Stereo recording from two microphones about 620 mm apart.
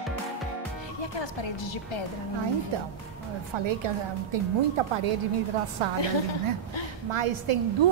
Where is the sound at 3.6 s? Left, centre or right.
Right.